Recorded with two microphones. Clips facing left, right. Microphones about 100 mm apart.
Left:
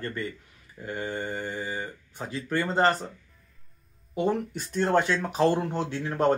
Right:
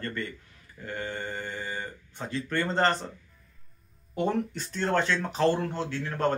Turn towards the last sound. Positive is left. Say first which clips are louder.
# left 4 dB
turn(degrees=20)  # may be behind; listen again after turning